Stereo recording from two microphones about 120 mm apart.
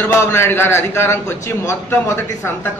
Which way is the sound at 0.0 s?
20° left (ahead or behind).